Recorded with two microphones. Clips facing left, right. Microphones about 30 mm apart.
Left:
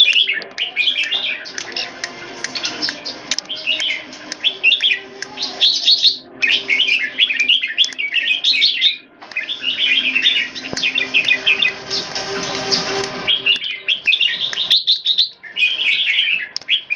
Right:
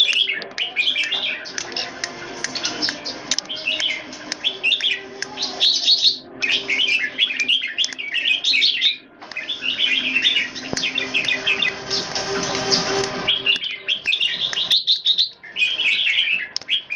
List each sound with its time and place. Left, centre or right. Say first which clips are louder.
0.2 s bird: left 4 dB; centre
9.4 s chirp: left 3 dB; centre
13.6 s bird: left 4 dB; centre